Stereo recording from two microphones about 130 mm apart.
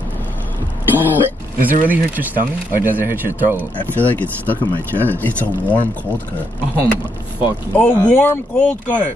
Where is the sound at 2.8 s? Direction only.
15° right (ahead or behind).